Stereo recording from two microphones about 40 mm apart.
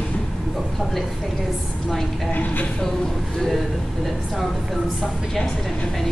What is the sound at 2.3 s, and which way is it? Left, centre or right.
Speech, left.